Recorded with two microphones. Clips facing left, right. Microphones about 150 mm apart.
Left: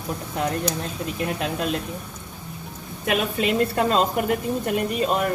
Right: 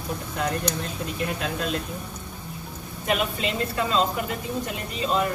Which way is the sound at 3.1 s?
55° left (ahead or behind).